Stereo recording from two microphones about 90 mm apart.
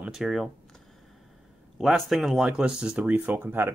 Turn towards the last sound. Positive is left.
turn(degrees=-20)  # may be behind; listen again after turning